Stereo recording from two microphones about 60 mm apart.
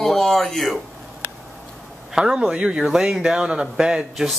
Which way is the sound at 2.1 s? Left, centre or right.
Centre.